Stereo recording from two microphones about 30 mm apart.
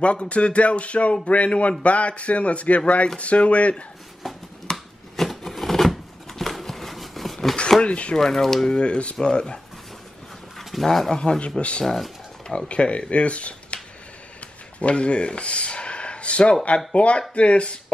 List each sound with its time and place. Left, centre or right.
0.0 s a man's voice: left
4.6 s a sound: centre
7.8 s speech: left
8.2 s speech: centre
8.6 s speech: left
10.6 s bird: centre
11.1 s speech: left
11.8 s speech: centre
12.4 s speech: left
14.8 s a sound: left
16.6 s a man's voice: left